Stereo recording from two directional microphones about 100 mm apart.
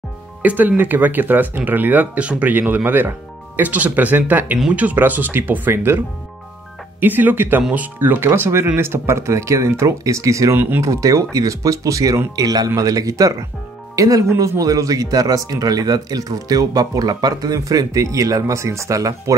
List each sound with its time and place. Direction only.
0.4 s speech: 15° right (ahead or behind); by 19.3 s 35° right (ahead or behind)